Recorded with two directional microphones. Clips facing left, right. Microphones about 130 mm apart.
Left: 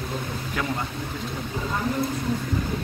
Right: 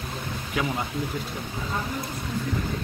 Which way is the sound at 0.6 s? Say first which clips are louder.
Right 2 dB; 10° right (ahead or behind).